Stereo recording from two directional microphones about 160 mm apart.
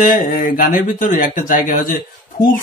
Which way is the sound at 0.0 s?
60° left (ahead or behind).